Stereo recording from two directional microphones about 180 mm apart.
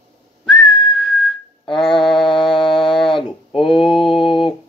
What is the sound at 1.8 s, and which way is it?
Mantra, centre (ahead or behind).